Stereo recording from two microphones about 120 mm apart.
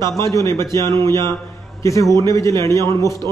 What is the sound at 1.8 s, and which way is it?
A man's voice, 25° left (ahead or behind).